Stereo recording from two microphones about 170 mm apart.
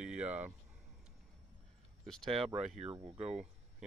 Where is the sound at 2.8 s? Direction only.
30° right (ahead or behind).